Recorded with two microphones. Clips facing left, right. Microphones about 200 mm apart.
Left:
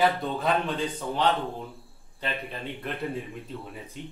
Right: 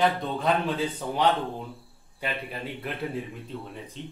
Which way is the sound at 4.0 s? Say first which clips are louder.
Left 1 dB; 10° left (ahead or behind).